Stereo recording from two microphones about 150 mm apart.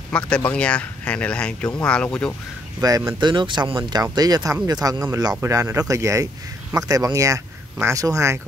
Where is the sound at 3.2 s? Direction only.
30° right (ahead or behind).